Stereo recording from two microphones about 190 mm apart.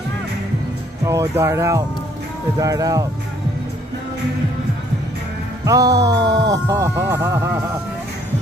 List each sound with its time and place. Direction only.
1.0 s speech: 15° right (ahead or behind)
5.7 s speech: 20° right (ahead or behind)